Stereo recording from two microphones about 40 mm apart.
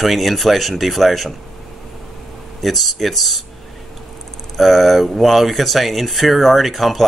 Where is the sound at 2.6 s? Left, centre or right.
Centre.